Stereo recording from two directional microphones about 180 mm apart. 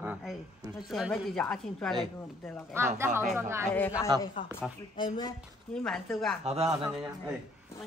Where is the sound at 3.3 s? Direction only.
15° right (ahead or behind).